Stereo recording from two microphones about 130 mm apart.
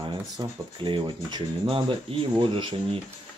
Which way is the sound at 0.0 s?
40° right (ahead or behind).